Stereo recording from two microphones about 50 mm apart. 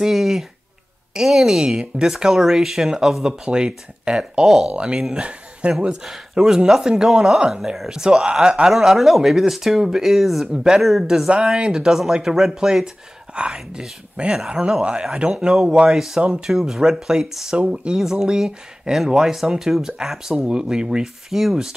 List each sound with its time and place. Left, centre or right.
0.0 s speech: centre
6.0 s speech: centre
8.6 s speech: centre
20.3 s speech: centre